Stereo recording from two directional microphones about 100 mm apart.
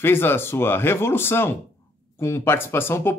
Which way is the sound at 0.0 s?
25° left (ahead or behind).